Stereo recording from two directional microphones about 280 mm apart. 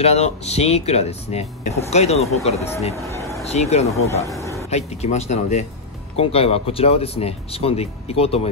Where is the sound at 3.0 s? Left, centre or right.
Centre.